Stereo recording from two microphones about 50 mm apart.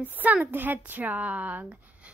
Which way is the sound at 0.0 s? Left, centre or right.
Right.